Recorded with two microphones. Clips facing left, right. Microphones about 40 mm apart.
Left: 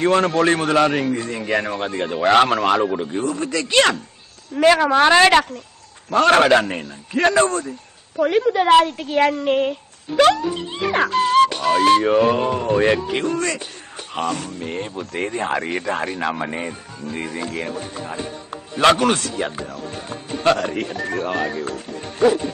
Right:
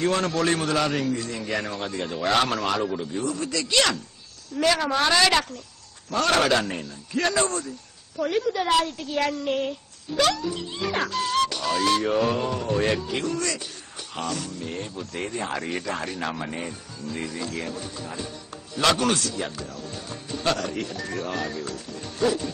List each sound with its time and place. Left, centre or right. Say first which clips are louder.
0.0 s speech: left 7 dB; left